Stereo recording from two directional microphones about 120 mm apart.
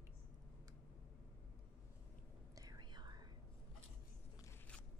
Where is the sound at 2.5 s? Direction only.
35° right (ahead or behind).